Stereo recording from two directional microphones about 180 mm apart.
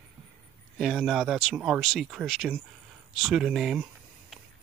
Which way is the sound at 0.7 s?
Centre (ahead or behind).